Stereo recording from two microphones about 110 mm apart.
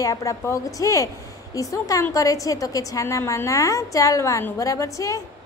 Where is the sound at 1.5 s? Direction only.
30° left (ahead or behind).